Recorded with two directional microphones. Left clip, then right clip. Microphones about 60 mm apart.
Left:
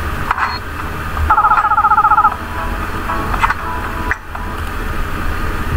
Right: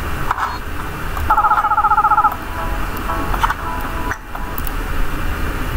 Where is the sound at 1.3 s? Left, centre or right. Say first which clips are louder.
Left 3 dB; centre.